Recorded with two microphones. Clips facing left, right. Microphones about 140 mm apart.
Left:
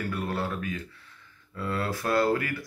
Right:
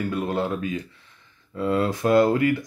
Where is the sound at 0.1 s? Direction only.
20° right (ahead or behind).